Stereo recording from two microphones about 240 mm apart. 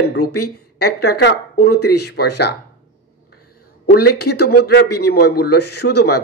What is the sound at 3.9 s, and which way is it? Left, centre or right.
A man's voice, left.